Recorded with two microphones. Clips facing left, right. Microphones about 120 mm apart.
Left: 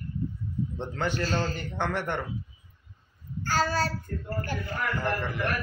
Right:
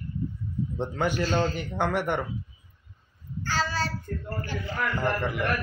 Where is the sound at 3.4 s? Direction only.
45° left (ahead or behind).